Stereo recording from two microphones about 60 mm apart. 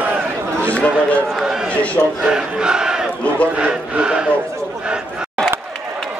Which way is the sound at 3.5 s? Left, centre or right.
Centre.